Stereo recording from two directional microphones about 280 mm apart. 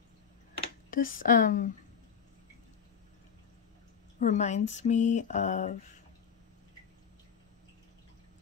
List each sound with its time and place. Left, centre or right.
0.8 s speech: left
4.2 s speech: left